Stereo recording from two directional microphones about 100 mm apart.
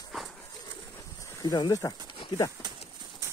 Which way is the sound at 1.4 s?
45° left (ahead or behind).